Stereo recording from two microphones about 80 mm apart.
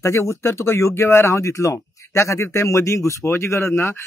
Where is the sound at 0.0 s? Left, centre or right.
Left.